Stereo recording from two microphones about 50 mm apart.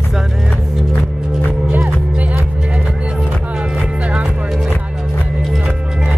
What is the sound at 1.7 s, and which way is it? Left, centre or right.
Music, right.